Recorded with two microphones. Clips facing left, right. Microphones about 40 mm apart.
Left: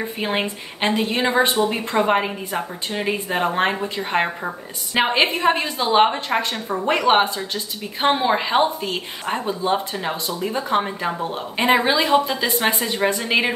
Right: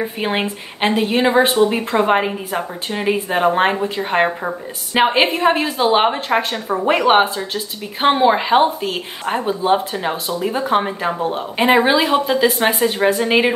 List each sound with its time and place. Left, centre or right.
0.0 s a woman's voice: centre